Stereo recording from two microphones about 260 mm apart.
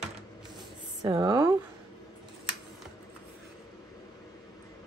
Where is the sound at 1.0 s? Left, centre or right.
Centre.